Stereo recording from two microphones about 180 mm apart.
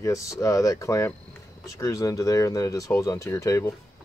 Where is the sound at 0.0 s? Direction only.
20° left (ahead or behind).